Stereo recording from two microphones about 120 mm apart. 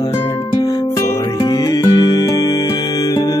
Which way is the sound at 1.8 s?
35° left (ahead or behind).